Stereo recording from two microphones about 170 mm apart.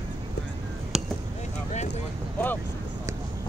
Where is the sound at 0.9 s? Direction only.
Centre (ahead or behind).